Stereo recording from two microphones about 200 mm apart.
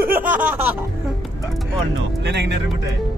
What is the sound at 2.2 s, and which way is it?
Speech, 60° right (ahead or behind).